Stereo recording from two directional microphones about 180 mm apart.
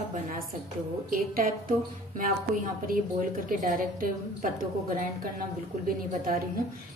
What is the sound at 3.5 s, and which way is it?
A woman's voice, 50° right (ahead or behind).